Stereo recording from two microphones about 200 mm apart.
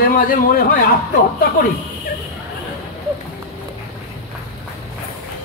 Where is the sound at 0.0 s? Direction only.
45° left (ahead or behind).